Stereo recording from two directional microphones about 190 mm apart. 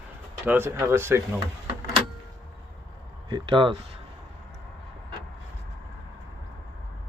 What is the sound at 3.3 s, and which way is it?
Speech, 25° right (ahead or behind).